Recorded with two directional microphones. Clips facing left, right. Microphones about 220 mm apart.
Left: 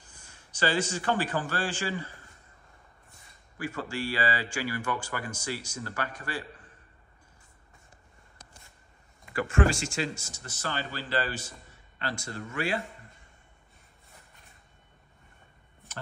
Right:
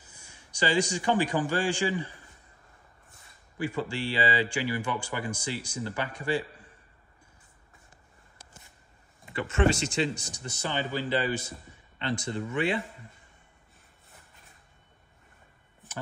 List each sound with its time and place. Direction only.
0.0 s a man's voice: 10° right (ahead or behind)
3.5 s speech: 15° right (ahead or behind)
9.2 s speech: 25° right (ahead or behind)
12.0 s speech: 20° right (ahead or behind)